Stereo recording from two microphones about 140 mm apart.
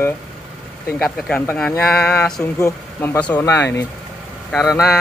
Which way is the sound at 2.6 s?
20° left (ahead or behind).